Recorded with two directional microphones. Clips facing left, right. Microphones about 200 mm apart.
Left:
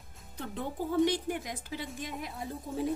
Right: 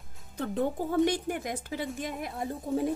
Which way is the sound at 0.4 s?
50° right (ahead or behind).